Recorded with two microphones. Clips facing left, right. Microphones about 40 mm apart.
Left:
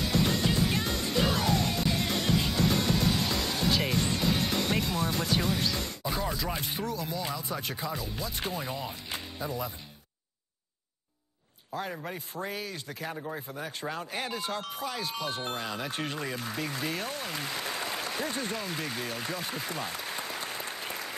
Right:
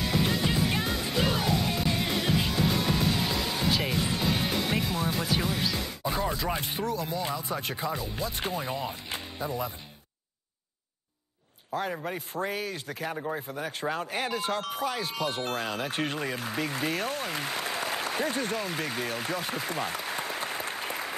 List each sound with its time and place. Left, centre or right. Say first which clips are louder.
0.0 s music: even; centre
6.0 s speech: right 4 dB; right
9.4 s speech: right 2 dB; right
11.7 s chime: right 4 dB; right
12.1 s speech: right 4 dB; right
12.5 s chime: right 4 dB; right
13.1 s speech: right 4 dB; centre
13.6 s chime: right 4 dB; right
15.5 s speech: right 3 dB; right
17.4 s applause: right 3 dB; right
18.0 s speech: right 3 dB; right
20.0 s applause: right 3 dB; right